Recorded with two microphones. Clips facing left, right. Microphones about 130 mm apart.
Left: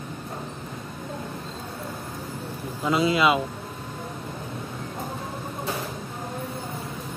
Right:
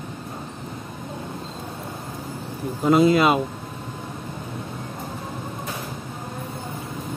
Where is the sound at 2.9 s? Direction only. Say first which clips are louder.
Right 5 dB; 45° right (ahead or behind).